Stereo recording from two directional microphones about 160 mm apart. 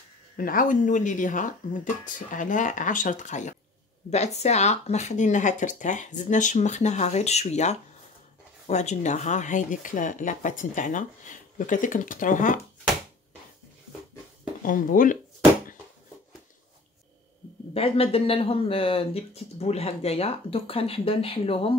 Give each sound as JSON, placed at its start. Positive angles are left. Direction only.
{"t": 0.4, "sound": "speech", "side_deg": 60}
{"t": 14.6, "sound": "speech", "side_deg": 60}
{"t": 17.7, "sound": "speech", "side_deg": 40}